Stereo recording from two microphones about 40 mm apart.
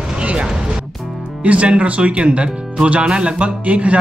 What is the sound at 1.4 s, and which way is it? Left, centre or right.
Speech, right.